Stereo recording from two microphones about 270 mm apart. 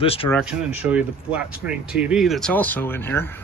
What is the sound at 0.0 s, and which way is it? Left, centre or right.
Speech, left.